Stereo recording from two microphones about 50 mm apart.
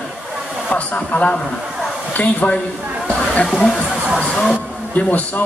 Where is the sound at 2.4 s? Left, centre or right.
Left.